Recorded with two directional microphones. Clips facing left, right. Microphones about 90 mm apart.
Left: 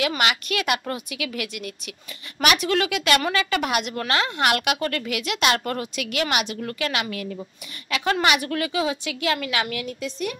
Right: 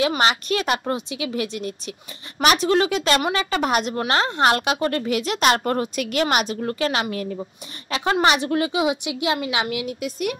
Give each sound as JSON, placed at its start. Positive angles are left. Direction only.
{"t": 0.2, "sound": "a woman's voice", "side_deg": -35}